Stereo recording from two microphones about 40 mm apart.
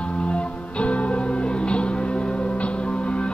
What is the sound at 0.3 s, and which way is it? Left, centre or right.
Music, left.